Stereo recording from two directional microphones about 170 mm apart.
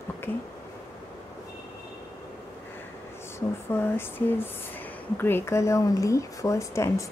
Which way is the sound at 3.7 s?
10° left (ahead or behind).